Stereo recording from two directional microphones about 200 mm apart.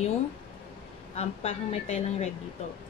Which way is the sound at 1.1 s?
35° left (ahead or behind).